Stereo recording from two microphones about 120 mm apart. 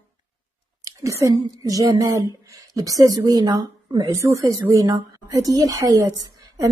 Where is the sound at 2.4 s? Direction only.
30° right (ahead or behind).